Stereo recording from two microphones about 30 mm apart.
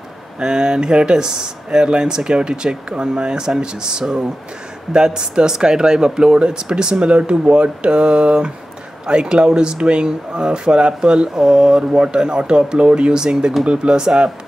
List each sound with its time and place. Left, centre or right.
0.4 s speech: right